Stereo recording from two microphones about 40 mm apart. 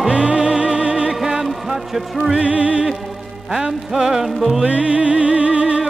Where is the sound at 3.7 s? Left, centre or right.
Centre.